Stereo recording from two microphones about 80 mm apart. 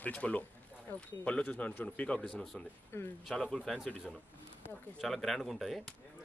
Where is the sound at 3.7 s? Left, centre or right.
Centre.